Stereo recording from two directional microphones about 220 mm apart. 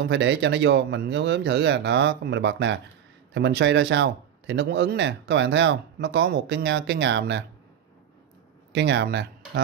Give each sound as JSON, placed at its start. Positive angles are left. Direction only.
{"t": 0.0, "sound": "speech", "side_deg": -55}
{"t": 8.7, "sound": "speech", "side_deg": -50}